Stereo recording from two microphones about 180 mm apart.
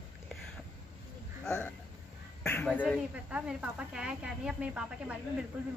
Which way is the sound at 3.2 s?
5° right (ahead or behind).